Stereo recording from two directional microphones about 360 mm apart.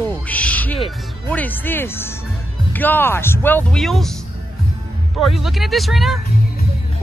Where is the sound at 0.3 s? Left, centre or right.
Centre.